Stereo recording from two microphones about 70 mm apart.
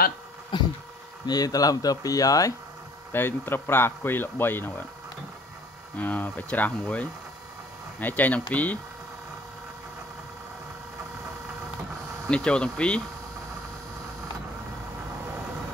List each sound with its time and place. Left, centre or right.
0.5 s a sound: left
1.2 s speech: left
3.1 s speech: left
5.9 s speech: left
12.3 s speech: centre